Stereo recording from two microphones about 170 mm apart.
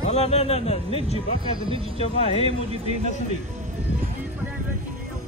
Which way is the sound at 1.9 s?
35° left (ahead or behind).